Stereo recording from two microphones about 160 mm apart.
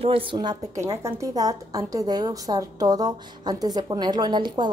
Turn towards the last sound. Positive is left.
turn(degrees=-25)  # may be behind; listen again after turning